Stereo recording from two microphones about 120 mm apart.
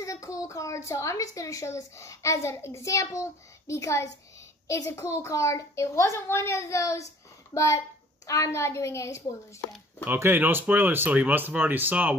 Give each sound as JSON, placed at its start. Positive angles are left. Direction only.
{"t": 0.0, "sound": "a woman's voice", "side_deg": 25}
{"t": 10.0, "sound": "speech", "side_deg": -20}